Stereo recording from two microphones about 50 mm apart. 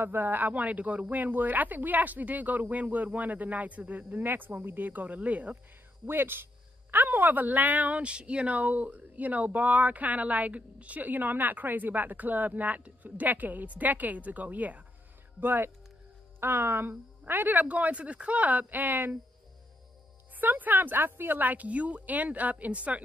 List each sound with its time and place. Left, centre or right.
0.0 s a woman's voice: right
6.0 s a woman's voice: right
15.4 s speech: right
17.2 s a woman's voice: right
20.3 s a woman's voice: right